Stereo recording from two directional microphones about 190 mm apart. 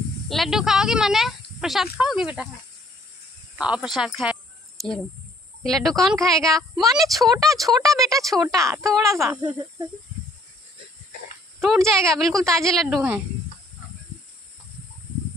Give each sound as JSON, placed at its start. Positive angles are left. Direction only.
{"t": 0.3, "sound": "a woman's voice", "side_deg": 0}
{"t": 3.5, "sound": "a woman's voice", "side_deg": -5}
{"t": 5.7, "sound": "a woman's voice", "side_deg": 0}
{"t": 7.8, "sound": "speech", "side_deg": -15}
{"t": 11.6, "sound": "a woman's voice", "side_deg": 0}